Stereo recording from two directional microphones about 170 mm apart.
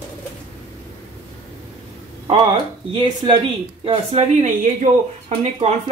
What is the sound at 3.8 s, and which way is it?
Speech, 40° right (ahead or behind).